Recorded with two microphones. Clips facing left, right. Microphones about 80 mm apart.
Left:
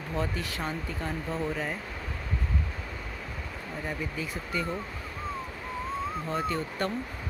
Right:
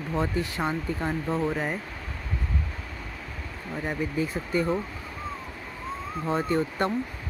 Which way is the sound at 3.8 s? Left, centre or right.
Right.